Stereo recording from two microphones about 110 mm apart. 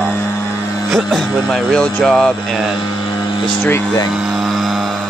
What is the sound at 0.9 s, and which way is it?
Speech, 5° left (ahead or behind).